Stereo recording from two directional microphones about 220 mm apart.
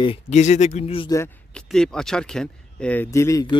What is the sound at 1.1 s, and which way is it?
Speech, 10° left (ahead or behind).